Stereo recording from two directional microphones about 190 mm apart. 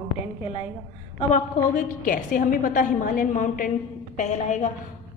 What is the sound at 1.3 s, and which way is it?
A woman's voice, 40° left (ahead or behind).